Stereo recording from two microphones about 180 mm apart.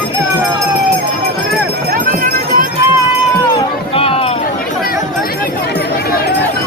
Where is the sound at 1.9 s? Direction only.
50° right (ahead or behind).